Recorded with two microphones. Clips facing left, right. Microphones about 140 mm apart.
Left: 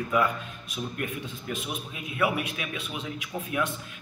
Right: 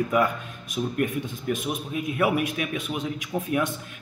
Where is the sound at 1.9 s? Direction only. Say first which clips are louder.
Right 4 dB; 45° right (ahead or behind).